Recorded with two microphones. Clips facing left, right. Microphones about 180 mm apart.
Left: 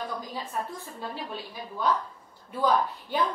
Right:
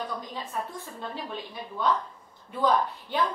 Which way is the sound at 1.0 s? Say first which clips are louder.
Even; 5° left (ahead or behind).